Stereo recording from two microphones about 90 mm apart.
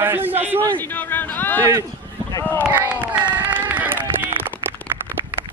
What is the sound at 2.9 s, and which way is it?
Run, 15° right (ahead or behind).